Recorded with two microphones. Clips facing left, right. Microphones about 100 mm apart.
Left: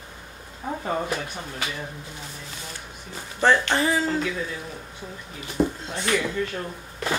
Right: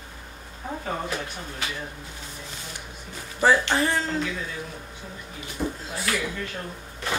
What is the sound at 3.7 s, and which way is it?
Speech, centre (ahead or behind).